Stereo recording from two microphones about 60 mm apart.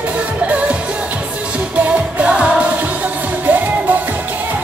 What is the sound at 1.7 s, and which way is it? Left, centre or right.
Music, right.